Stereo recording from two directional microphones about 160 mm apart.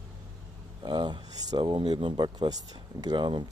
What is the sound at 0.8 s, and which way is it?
Speech, 30° right (ahead or behind).